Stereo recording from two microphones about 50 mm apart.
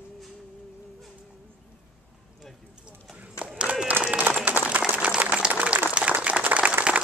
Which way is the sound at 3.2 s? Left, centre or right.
Right.